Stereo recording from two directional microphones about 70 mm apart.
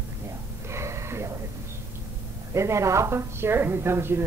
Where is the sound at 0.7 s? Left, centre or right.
Right.